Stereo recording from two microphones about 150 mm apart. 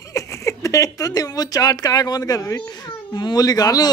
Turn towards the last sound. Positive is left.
turn(degrees=25)  # may be behind; listen again after turning